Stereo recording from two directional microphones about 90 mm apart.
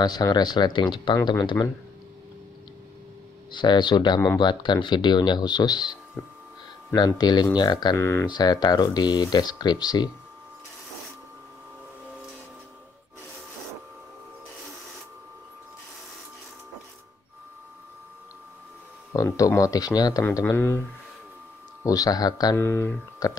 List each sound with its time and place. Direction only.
0.0 s speech: 55° left (ahead or behind)
1.6 s speech: 35° left (ahead or behind)
3.5 s speech: 55° left (ahead or behind)
6.2 s speech: 25° left (ahead or behind)
7.2 s speech: 50° left (ahead or behind)
8.0 s speech: 35° left (ahead or behind)
8.3 s speech: 50° left (ahead or behind)
19.1 s speech: 40° left (ahead or behind)
20.5 s speech: 30° left (ahead or behind)
21.8 s speech: 45° left (ahead or behind)
22.6 s speech: 30° left (ahead or behind)
23.2 s speech: 45° left (ahead or behind)